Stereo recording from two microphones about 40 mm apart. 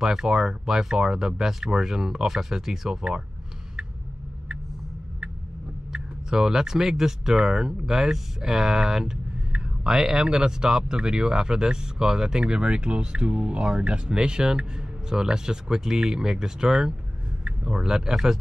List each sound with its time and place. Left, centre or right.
0.0 s speech: centre
5.9 s speech: centre